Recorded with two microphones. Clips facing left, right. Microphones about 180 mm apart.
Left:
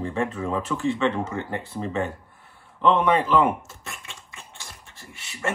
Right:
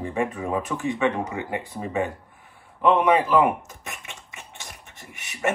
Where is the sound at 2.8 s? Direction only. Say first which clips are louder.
Right 1 dB; 10° right (ahead or behind).